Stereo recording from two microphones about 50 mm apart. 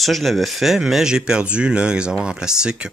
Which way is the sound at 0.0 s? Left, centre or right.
Centre.